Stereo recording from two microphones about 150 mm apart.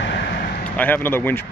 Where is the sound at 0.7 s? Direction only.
10° left (ahead or behind).